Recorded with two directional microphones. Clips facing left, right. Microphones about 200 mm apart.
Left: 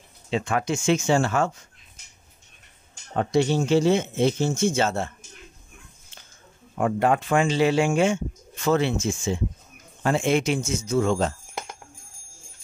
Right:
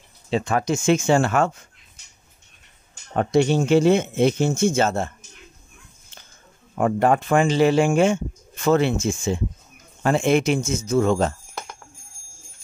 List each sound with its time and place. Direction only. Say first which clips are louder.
0.3 s speech: right 3 dB; 40° right (ahead or behind); by 1.7 s 60° right (ahead or behind)
3.2 s speech: right 3 dB; 60° right (ahead or behind)
6.8 s speech: right 3 dB; 45° right (ahead or behind)